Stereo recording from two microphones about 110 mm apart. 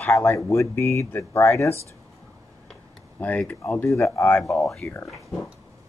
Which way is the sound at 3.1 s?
10° left (ahead or behind).